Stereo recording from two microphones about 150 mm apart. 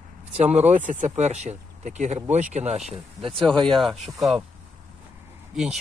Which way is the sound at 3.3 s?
5° left (ahead or behind).